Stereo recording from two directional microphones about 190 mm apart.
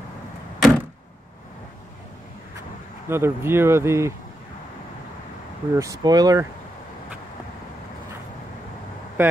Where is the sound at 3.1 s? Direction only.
15° right (ahead or behind).